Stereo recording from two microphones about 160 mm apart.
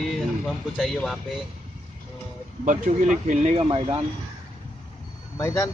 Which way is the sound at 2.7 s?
50° right (ahead or behind).